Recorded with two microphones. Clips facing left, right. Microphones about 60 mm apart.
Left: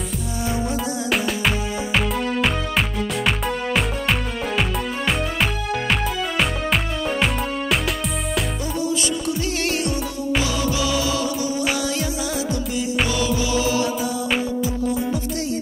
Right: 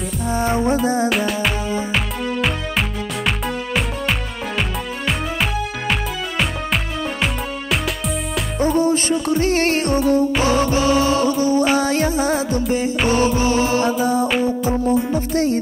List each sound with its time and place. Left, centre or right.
0.3 s music: right
1.0 s music: centre
8.5 s music: right